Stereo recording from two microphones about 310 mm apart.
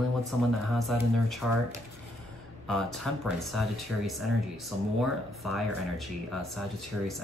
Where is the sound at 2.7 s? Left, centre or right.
Centre.